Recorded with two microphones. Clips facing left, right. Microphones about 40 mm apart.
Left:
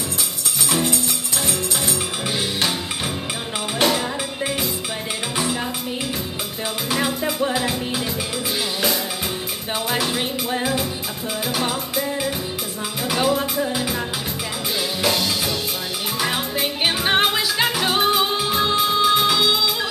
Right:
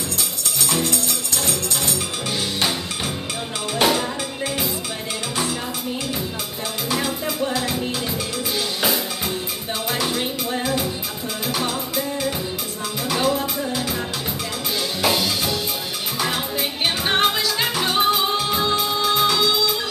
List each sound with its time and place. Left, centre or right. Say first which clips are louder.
0.6 s music: left 1 dB; centre
3.8 s music: right 1 dB; centre
6.9 s music: left 2 dB; centre
9.8 s music: even; centre
13.4 s music: left 2 dB; centre
15.0 s music: right 1 dB; centre
16.2 s music: left 1 dB; centre